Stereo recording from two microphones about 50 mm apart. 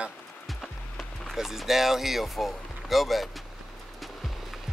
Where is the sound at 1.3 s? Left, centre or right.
Centre.